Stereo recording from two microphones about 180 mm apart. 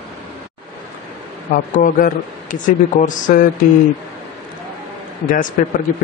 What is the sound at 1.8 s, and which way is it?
Speech, 50° left (ahead or behind).